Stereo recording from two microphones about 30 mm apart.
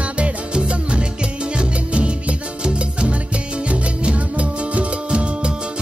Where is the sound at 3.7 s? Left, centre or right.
Right.